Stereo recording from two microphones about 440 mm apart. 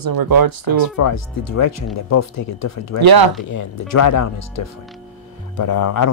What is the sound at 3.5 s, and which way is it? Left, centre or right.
Speech, left.